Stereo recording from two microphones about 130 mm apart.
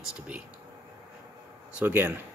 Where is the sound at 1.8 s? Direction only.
15° right (ahead or behind).